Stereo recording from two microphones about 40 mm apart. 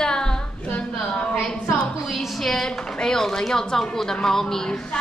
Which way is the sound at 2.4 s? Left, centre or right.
Centre.